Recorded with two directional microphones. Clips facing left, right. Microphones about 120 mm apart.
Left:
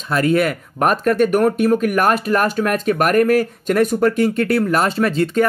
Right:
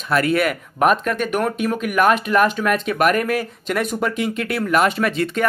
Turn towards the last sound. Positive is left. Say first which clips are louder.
# left 4 dB
turn(degrees=30)  # may be behind; listen again after turning